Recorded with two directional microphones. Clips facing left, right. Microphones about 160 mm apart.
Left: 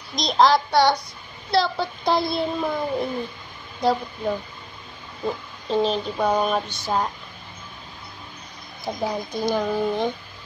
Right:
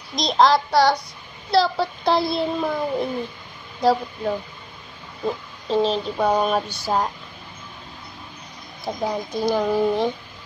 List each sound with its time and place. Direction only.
0.1 s a child's voice: centre (ahead or behind)
5.2 s a sound: centre (ahead or behind)
8.8 s a child's voice: 5° right (ahead or behind)